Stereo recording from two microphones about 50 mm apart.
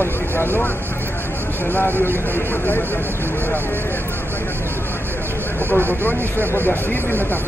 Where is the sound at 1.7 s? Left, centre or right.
Left.